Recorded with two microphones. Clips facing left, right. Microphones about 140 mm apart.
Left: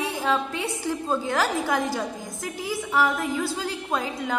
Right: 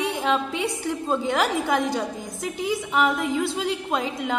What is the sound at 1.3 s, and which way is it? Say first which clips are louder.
Speech: right 1 dB; 20° right (ahead or behind).